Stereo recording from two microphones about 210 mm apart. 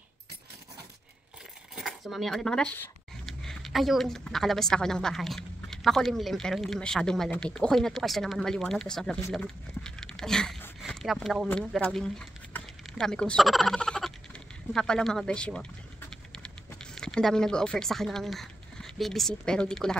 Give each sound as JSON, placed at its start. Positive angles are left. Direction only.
{"t": 1.8, "sound": "speech", "side_deg": 0}
{"t": 9.3, "sound": "a sound", "side_deg": 5}
{"t": 11.4, "sound": "speech", "side_deg": 5}